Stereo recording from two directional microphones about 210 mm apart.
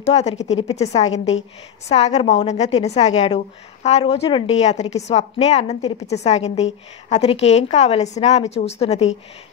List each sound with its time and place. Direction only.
0.0 s a woman's voice: 30° left (ahead or behind)